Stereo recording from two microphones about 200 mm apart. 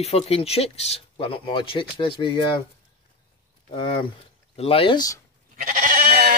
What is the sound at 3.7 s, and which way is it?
Speech, 25° left (ahead or behind).